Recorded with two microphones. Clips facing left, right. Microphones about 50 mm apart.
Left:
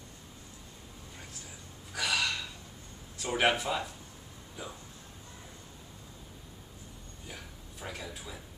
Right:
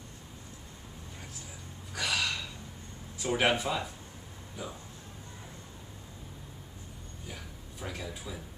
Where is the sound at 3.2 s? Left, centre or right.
Centre.